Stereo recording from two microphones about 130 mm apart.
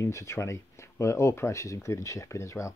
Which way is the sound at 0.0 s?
20° left (ahead or behind).